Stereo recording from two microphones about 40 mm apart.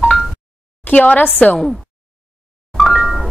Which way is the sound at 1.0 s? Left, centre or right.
Left.